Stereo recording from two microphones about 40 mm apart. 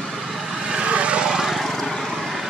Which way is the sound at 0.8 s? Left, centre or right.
Right.